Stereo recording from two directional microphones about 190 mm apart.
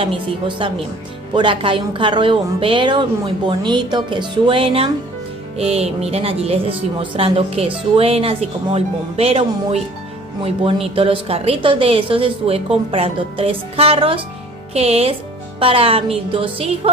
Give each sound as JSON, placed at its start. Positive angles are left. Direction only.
{"t": 0.0, "sound": "a woman's voice", "side_deg": -25}